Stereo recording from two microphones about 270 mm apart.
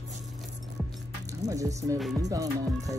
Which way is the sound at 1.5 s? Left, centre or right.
Centre.